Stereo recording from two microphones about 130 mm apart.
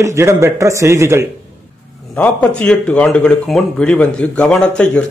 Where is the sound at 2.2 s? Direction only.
10° left (ahead or behind).